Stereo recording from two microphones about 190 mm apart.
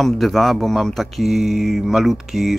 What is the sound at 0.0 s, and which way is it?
Speech, centre (ahead or behind).